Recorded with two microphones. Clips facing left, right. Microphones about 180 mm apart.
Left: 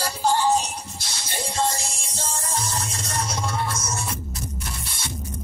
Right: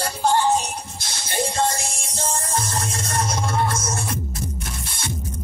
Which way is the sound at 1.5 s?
55° right (ahead or behind).